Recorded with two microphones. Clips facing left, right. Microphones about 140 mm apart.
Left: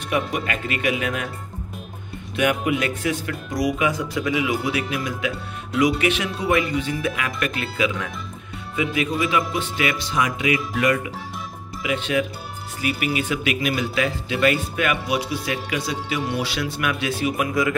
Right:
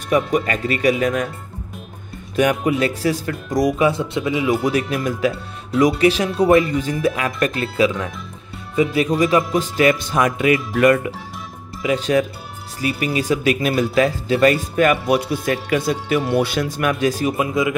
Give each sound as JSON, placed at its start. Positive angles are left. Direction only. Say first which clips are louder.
{"t": 0.1, "sound": "speech", "louder": "right 6 dB", "side_deg": -40}
{"t": 2.3, "sound": "speech", "louder": "right 4 dB", "side_deg": -40}
{"t": 9.2, "sound": "speech", "louder": "right 6 dB", "side_deg": -40}
{"t": 17.4, "sound": "speech", "louder": "right 2 dB", "side_deg": -20}